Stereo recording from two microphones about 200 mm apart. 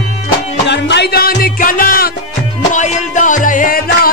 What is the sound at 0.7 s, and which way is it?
Music, 60° left (ahead or behind).